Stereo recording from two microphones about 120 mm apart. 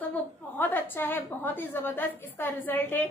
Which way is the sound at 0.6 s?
15° left (ahead or behind).